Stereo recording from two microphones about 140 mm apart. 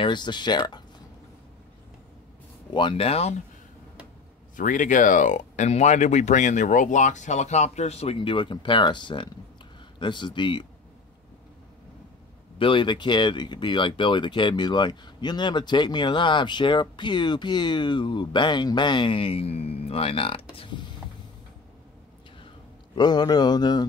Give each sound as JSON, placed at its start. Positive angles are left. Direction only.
{"t": 0.0, "sound": "speech", "side_deg": 35}
{"t": 2.7, "sound": "speech", "side_deg": 35}
{"t": 4.6, "sound": "speech", "side_deg": 70}
{"t": 12.5, "sound": "speech", "side_deg": 40}
{"t": 22.9, "sound": "speech", "side_deg": 30}